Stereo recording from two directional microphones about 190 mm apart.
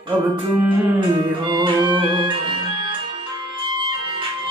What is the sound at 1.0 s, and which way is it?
Music, 25° right (ahead or behind).